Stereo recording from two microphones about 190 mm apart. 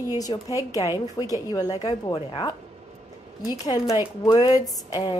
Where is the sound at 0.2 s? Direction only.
20° left (ahead or behind).